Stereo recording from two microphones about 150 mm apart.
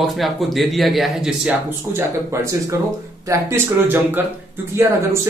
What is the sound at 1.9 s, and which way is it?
Speech, 15° right (ahead or behind).